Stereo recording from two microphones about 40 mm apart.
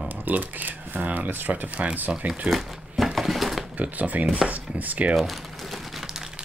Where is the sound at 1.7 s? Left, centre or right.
Right.